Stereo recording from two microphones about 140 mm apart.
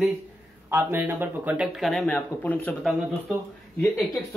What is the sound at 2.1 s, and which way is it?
Speech, 15° left (ahead or behind).